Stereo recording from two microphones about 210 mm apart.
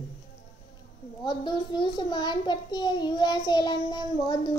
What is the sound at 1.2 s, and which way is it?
A child's voice, 20° left (ahead or behind).